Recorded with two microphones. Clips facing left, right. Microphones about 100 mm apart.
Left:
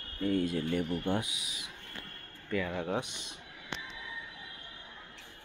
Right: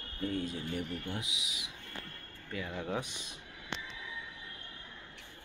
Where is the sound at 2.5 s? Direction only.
65° left (ahead or behind).